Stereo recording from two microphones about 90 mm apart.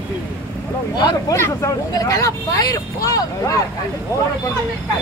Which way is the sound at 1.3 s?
30° left (ahead or behind).